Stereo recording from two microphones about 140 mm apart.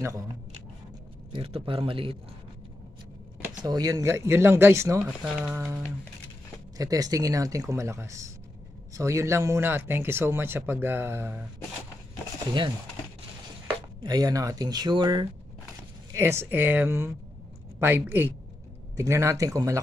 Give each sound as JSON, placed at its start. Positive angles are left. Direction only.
{"t": 1.3, "sound": "a man's voice", "side_deg": -40}
{"t": 3.6, "sound": "speech", "side_deg": -25}
{"t": 5.2, "sound": "speech", "side_deg": -5}
{"t": 5.5, "sound": "speech", "side_deg": -15}
{"t": 6.8, "sound": "speech", "side_deg": -25}
{"t": 14.0, "sound": "speech", "side_deg": -25}
{"t": 16.1, "sound": "speech", "side_deg": -20}